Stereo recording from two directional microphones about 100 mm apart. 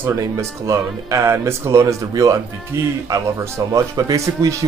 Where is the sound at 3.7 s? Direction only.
35° right (ahead or behind).